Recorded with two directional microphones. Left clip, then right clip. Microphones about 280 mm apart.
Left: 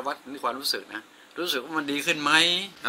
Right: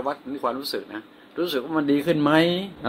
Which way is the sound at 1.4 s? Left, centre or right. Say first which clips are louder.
Right 3 dB; centre.